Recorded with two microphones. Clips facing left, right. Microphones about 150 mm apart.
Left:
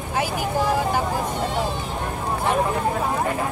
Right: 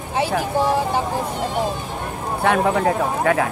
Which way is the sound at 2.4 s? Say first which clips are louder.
Right 5 dB; 80° right.